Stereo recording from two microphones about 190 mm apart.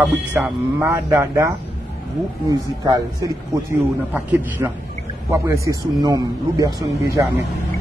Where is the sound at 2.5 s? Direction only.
20° right (ahead or behind).